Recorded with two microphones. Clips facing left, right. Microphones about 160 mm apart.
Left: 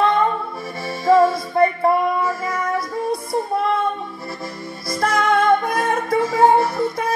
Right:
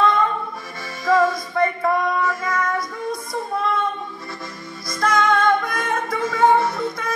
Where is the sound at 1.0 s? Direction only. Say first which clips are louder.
Left 4 dB; 30° left (ahead or behind).